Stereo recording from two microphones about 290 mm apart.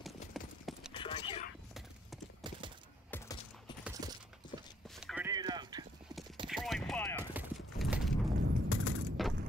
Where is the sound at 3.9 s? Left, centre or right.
Centre.